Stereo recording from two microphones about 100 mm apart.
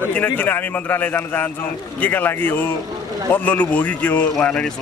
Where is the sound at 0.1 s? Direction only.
15° left (ahead or behind).